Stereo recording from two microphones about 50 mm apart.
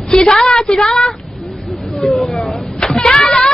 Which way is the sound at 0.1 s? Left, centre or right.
Centre.